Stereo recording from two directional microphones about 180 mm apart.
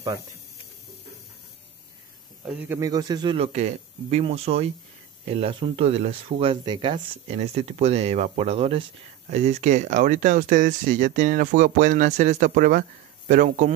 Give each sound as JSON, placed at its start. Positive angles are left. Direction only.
{"t": 2.4, "sound": "speech", "side_deg": -10}
{"t": 3.5, "sound": "speech", "side_deg": -40}